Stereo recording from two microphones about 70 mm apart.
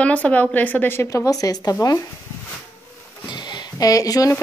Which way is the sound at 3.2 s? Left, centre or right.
Left.